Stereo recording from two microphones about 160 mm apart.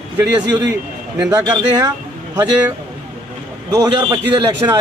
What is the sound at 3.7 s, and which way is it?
A man's voice, 25° right (ahead or behind).